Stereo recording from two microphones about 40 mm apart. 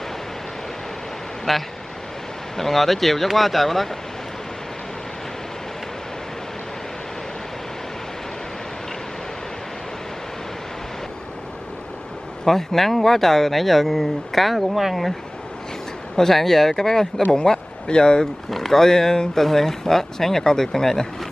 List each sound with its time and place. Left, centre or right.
1.5 s speech: centre
12.4 s speech: centre
16.2 s speech: centre
18.5 s speech: centre